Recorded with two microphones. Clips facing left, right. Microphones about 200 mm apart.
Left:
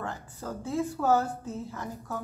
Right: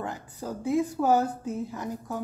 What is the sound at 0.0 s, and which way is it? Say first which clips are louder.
A woman's voice: right 2 dB; 15° right (ahead or behind).